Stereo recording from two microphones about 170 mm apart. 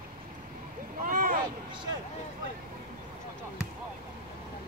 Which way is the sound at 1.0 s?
55° right (ahead or behind).